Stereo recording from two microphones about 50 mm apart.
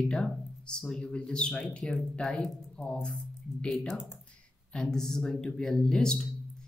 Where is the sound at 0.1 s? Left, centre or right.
Centre.